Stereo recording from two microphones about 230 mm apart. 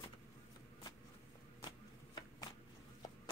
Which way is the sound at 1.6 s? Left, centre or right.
Centre.